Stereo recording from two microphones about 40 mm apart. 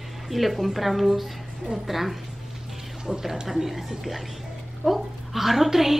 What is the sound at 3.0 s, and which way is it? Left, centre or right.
Speech, centre.